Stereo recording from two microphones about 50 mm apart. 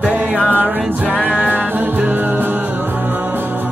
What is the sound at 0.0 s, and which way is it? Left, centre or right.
Music, right.